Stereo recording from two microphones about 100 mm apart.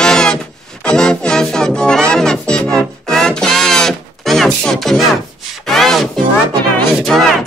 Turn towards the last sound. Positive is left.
turn(degrees=0)  # may be behind; listen again after turning